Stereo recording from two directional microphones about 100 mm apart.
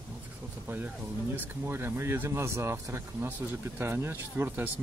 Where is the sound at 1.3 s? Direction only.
20° right (ahead or behind).